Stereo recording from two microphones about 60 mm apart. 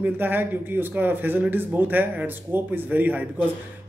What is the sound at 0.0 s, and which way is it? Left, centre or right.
Speech, right.